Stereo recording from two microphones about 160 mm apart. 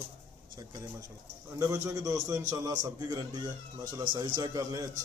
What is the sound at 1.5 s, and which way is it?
A man's voice, 20° right (ahead or behind).